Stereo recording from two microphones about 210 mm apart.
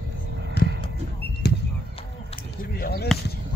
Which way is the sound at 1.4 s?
50° left (ahead or behind).